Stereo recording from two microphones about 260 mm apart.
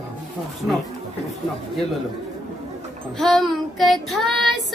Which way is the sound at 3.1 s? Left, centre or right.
Centre.